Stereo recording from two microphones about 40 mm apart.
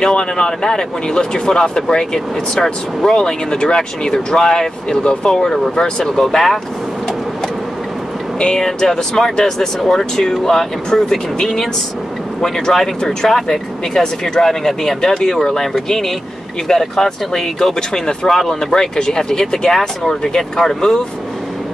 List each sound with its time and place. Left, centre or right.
0.0 s speech: left
6.2 s speech: centre
8.5 s speech: centre